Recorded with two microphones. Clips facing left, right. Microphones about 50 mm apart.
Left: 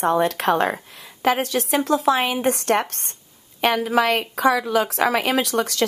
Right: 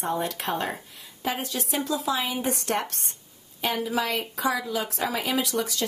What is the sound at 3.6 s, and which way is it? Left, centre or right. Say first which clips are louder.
Speech: left 8 dB; left.